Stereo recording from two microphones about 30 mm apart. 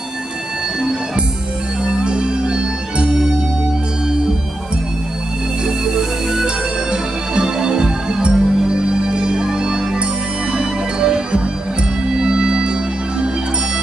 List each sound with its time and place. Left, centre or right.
1.9 s music: right
5.9 s music: centre